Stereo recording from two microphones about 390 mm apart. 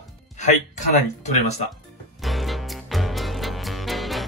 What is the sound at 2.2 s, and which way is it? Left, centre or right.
Music, centre.